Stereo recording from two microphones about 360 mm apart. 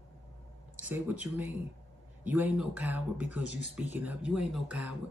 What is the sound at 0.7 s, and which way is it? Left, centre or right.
Speech, centre.